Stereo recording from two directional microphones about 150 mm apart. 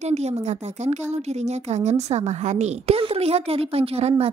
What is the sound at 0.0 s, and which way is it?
A woman's voice, 45° right (ahead or behind).